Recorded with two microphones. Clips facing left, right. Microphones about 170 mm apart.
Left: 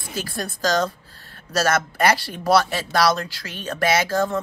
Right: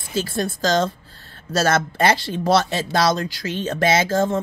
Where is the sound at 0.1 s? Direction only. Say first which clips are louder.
Right 6 dB; 25° right (ahead or behind).